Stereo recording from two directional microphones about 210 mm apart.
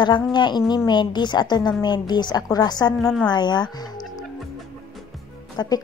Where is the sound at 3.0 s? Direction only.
Centre (ahead or behind).